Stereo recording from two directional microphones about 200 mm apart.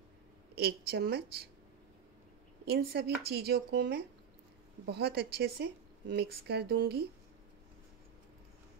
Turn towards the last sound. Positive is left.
turn(degrees=-55)  # may be behind; listen again after turning